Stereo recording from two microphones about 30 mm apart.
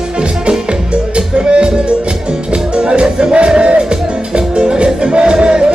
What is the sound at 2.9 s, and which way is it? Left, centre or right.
Music, right.